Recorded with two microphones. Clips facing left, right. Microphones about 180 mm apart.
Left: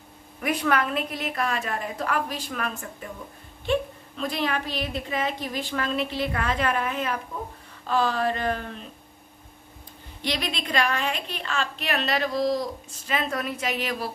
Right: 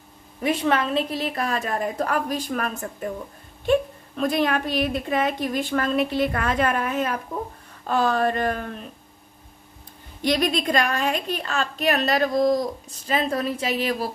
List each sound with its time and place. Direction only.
0.4 s a woman's voice: 25° right (ahead or behind); by 3.1 s 45° right (ahead or behind)
4.2 s a woman's voice: 50° right (ahead or behind)
10.2 s a woman's voice: 45° right (ahead or behind)
13.0 s a woman's voice: 35° right (ahead or behind)